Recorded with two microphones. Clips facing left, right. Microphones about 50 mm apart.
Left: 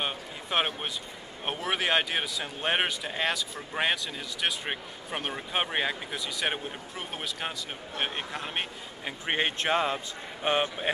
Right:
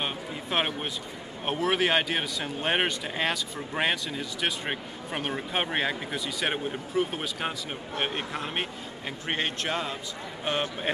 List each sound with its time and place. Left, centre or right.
0.0 s a sound: centre
1.4 s a man's voice: centre
9.2 s speech: centre
10.4 s a man's voice: centre